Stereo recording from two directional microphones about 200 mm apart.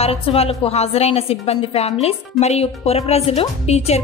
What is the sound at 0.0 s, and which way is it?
A woman's voice, 30° left (ahead or behind).